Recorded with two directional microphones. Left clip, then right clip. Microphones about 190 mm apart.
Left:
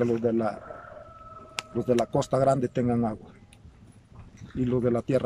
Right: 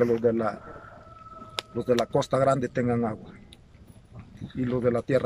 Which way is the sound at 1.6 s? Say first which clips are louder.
Right 1 dB; 25° right (ahead or behind).